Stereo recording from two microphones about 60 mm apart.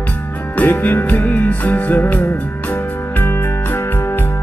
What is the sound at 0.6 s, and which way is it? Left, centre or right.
Music, left.